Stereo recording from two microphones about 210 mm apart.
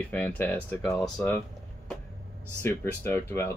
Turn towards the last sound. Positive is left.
turn(degrees=10)  # may be behind; listen again after turning